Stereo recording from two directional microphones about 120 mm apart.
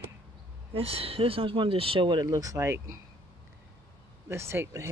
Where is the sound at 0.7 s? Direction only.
55° right (ahead or behind); by 3.0 s 25° right (ahead or behind).